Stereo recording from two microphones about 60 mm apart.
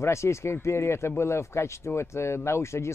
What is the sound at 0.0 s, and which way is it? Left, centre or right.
Speech, left.